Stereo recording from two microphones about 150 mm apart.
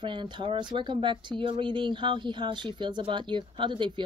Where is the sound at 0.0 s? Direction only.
30° right (ahead or behind).